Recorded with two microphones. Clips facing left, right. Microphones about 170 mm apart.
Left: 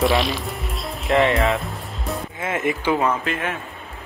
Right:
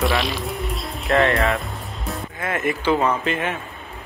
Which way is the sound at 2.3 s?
20° left (ahead or behind).